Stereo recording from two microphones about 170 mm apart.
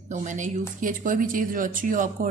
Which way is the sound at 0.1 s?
45° right (ahead or behind).